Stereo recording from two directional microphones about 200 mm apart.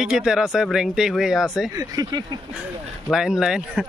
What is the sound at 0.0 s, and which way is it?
Speech, centre (ahead or behind).